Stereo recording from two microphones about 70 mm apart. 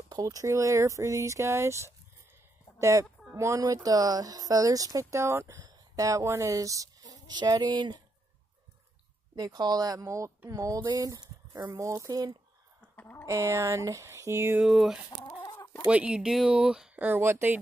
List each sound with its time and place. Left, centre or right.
0.2 s speech: right
3.6 s speech: right
5.2 s speech: right
5.6 s speech: right
9.3 s speech: right
10.8 s speech: right
11.7 s speech: right
12.1 s speech: right
12.9 s a sound: left
13.3 s speech: right
14.6 s speech: centre
15.4 s chicken: left
15.9 s speech: centre
16.9 s speech: right